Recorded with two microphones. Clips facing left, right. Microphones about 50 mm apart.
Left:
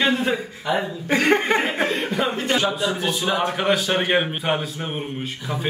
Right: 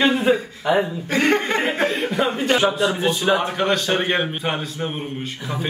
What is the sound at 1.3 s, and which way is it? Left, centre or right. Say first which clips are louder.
Speech: left 2 dB; centre.